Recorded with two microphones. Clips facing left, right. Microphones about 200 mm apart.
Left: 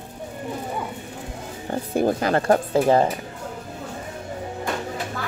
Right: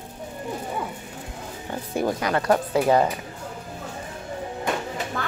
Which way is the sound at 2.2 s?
35° left (ahead or behind).